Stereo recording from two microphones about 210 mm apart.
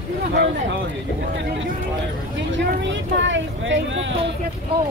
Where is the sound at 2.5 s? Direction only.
60° right (ahead or behind).